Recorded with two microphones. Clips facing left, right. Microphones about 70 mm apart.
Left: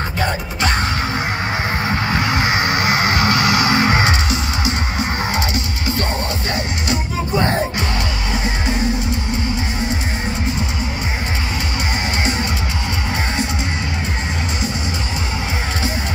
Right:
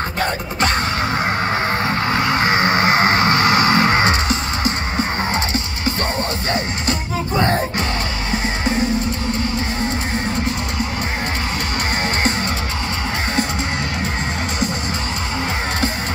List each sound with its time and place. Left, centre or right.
2.3 s music: right